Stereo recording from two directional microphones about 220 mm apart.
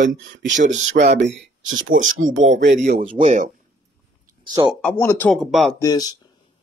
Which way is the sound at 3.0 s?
25° right (ahead or behind).